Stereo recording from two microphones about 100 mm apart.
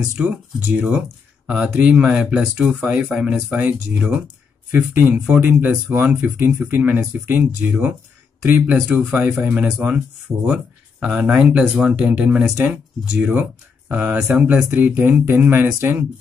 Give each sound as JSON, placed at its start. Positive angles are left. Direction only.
{"t": 0.0, "sound": "speech", "side_deg": -15}
{"t": 14.1, "sound": "speech", "side_deg": -10}